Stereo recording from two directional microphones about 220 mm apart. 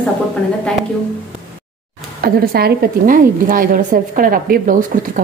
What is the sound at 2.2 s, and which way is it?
A woman's voice, 45° right (ahead or behind).